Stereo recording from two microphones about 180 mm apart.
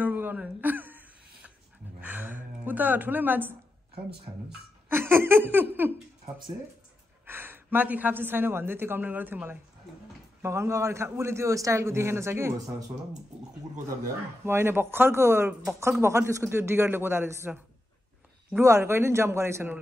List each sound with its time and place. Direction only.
0.0 s a sound: 10° right (ahead or behind)
4.5 s speech: 10° right (ahead or behind)
7.2 s speech: 10° right (ahead or behind)
14.4 s speech: 15° right (ahead or behind)